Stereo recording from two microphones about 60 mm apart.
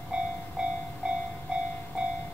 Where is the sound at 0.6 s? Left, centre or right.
Centre.